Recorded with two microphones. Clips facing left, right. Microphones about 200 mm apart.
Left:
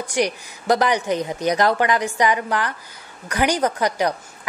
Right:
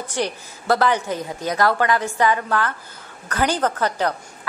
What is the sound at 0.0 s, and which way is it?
A woman's voice, 15° left (ahead or behind).